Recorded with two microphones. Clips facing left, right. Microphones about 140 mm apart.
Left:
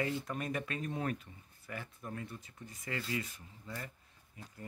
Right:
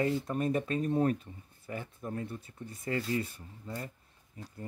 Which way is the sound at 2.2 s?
55° right (ahead or behind).